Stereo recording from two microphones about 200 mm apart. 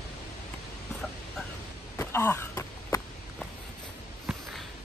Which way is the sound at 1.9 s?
10° left (ahead or behind).